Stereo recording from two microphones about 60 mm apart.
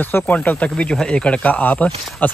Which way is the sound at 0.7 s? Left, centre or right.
Centre.